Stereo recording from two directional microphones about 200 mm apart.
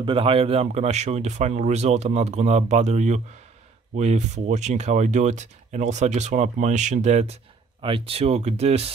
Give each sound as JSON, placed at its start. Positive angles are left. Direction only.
{"t": 0.0, "sound": "speech", "side_deg": -25}